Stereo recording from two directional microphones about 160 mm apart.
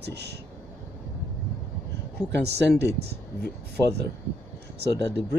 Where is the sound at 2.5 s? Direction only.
90° right.